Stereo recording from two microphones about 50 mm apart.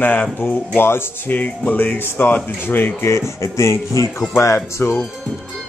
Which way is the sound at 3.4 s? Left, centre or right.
Left.